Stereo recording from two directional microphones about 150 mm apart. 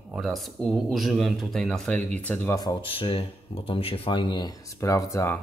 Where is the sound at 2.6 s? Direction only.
30° left (ahead or behind).